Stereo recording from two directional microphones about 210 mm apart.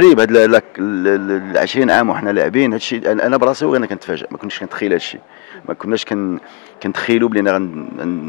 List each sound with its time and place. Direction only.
0.0 s speech: 10° left (ahead or behind)
6.1 s speech: 15° left (ahead or behind)